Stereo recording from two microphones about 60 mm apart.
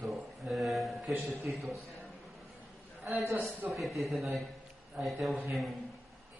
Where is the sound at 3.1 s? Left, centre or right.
Centre.